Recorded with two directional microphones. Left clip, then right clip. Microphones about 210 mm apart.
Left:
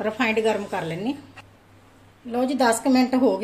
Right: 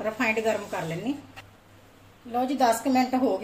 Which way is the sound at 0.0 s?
40° left (ahead or behind).